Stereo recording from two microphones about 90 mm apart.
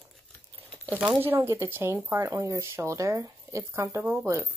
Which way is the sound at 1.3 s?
25° right (ahead or behind).